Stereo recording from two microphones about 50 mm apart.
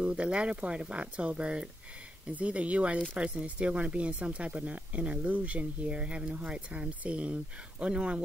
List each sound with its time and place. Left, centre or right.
0.0 s speech: right